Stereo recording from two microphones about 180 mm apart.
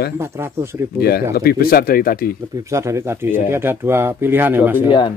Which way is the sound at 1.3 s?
55° left (ahead or behind).